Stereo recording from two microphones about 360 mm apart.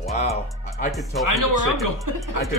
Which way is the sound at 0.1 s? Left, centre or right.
Centre.